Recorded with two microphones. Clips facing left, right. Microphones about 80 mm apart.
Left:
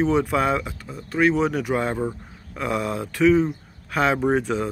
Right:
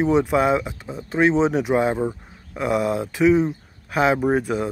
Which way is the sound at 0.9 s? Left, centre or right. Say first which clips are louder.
Right 1 dB; right.